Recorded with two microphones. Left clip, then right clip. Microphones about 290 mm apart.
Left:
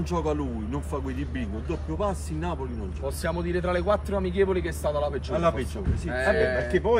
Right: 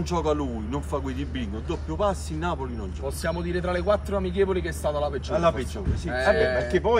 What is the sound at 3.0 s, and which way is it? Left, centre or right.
Speech, centre.